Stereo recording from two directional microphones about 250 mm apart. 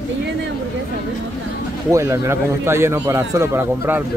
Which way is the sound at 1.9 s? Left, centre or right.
Centre.